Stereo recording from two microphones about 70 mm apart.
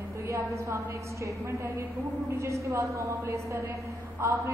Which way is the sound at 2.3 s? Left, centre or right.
Right.